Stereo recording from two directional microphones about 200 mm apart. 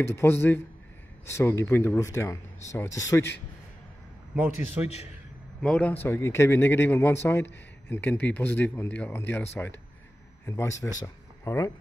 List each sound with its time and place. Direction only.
0.0 s a man's voice: 10° left (ahead or behind)
4.4 s a man's voice: 10° right (ahead or behind)
5.6 s a man's voice: 5° left (ahead or behind)